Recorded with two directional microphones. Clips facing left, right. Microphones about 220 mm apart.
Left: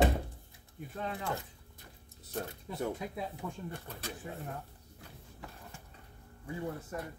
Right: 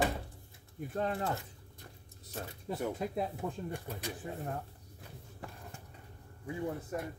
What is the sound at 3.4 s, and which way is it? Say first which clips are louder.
Speech: right 3 dB; 20° right (ahead or behind).